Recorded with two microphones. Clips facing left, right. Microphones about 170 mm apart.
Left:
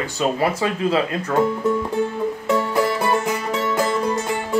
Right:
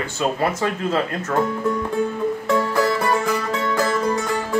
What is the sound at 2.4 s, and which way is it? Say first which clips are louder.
Music: even; 20° left (ahead or behind).